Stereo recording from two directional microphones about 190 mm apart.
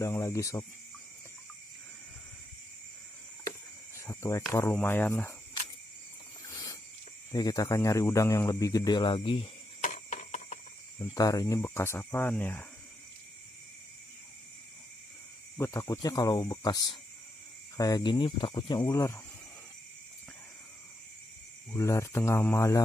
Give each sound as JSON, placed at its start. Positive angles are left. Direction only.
{"t": 0.0, "sound": "speech", "side_deg": 15}
{"t": 4.0, "sound": "speech", "side_deg": 15}
{"t": 6.4, "sound": "a sound", "side_deg": 20}
{"t": 7.3, "sound": "speech", "side_deg": 20}
{"t": 9.8, "sound": "cricket", "side_deg": 40}
{"t": 11.0, "sound": "speech", "side_deg": 20}
{"t": 15.5, "sound": "speech", "side_deg": 10}
{"t": 21.7, "sound": "speech", "side_deg": 15}